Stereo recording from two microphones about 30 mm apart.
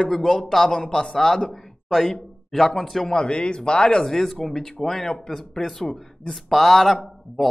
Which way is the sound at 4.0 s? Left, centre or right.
Centre.